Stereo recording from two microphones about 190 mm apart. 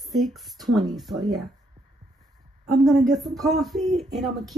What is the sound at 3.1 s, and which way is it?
Speech, centre (ahead or behind).